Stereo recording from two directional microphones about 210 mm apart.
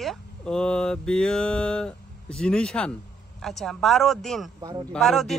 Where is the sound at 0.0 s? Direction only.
Centre (ahead or behind).